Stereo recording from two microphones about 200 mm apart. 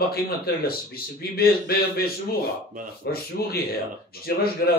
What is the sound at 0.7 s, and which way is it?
Speech, 50° left (ahead or behind).